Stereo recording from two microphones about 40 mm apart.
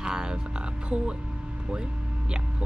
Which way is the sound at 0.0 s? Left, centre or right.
Centre.